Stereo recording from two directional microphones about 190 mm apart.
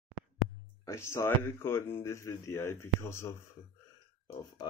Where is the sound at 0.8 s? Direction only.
15° left (ahead or behind).